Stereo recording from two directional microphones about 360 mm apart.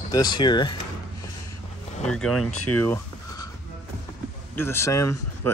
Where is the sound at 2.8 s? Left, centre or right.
Centre.